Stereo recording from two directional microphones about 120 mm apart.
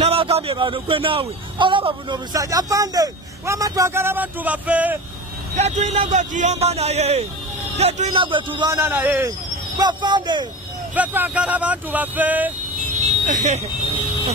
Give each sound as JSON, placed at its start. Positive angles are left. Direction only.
{"t": 0.0, "sound": "a man's voice", "side_deg": -55}
{"t": 5.6, "sound": "speech", "side_deg": -70}
{"t": 8.1, "sound": "speech", "side_deg": -45}
{"t": 8.7, "sound": "speech", "side_deg": -15}
{"t": 9.8, "sound": "a man's voice", "side_deg": -40}
{"t": 11.0, "sound": "speech", "side_deg": -15}
{"t": 13.3, "sound": "speech", "side_deg": -80}